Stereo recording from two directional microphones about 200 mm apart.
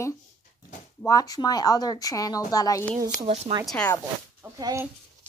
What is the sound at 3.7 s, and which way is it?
Speech, 5° left (ahead or behind).